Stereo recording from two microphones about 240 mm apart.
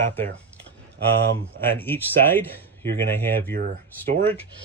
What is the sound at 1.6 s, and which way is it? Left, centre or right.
Speech, centre.